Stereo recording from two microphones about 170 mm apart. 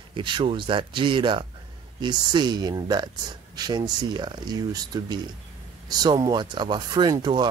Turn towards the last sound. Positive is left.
turn(degrees=-25)  # may be behind; listen again after turning